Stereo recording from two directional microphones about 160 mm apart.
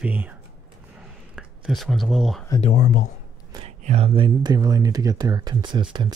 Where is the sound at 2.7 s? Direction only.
55° left (ahead or behind).